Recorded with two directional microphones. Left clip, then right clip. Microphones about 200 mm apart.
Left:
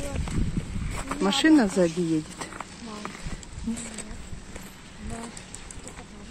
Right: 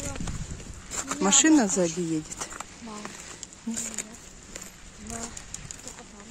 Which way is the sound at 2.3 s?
15° right (ahead or behind).